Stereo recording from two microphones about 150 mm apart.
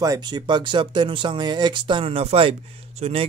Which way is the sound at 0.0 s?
25° right (ahead or behind).